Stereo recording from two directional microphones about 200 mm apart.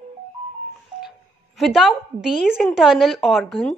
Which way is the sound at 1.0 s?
Centre (ahead or behind).